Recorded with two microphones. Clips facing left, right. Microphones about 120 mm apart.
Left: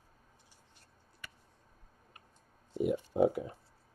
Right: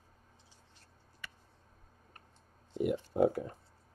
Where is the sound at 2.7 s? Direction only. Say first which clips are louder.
Left 1 dB; 15° left (ahead or behind).